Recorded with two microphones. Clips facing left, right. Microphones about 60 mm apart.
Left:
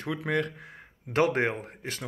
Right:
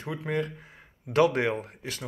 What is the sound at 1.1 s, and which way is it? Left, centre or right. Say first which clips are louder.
Speech: right 2 dB; left.